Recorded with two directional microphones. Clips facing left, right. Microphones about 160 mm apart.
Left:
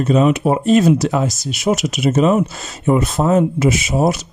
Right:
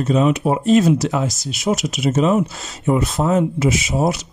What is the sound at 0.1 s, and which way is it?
Speech, 70° left (ahead or behind).